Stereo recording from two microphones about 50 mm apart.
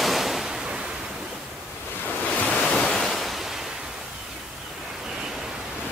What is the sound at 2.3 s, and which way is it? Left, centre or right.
Ocean, left.